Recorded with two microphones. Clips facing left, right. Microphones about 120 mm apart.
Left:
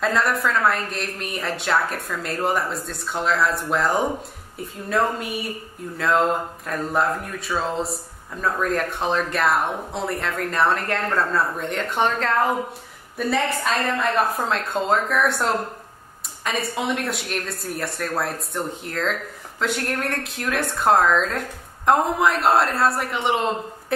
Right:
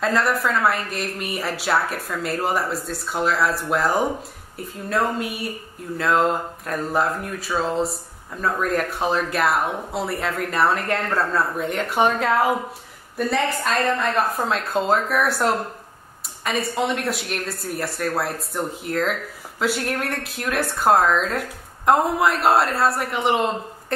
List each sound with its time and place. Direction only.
0.0 s speech: centre (ahead or behind)
13.2 s speech: centre (ahead or behind)